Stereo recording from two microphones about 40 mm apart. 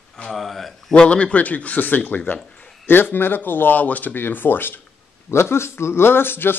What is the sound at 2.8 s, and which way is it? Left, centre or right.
Speech, left.